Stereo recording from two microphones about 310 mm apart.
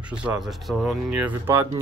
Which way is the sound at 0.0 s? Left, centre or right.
Centre.